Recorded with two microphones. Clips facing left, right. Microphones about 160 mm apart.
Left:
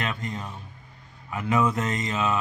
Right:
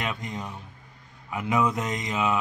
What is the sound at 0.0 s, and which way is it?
Speech, 15° right (ahead or behind).